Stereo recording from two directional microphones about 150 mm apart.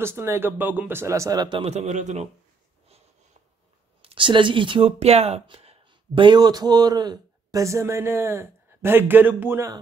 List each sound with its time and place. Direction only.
0.0 s speech: 15° right (ahead or behind)
1.6 s a man's voice: 45° right (ahead or behind)
4.0 s speech: 35° right (ahead or behind); by 9.7 s 15° right (ahead or behind)